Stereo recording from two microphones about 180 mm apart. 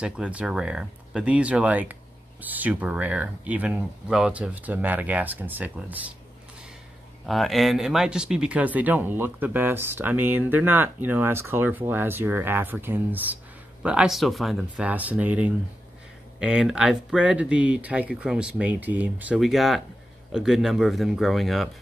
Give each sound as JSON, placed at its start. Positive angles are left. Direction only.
{"t": 0.0, "sound": "speech", "side_deg": -5}
{"t": 7.2, "sound": "speech", "side_deg": 0}